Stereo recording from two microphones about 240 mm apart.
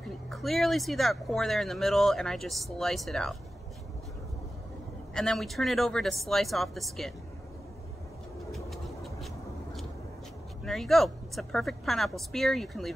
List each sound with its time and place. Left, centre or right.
0.3 s speech: centre
5.1 s speech: centre
8.5 s vehicle: centre
10.6 s speech: centre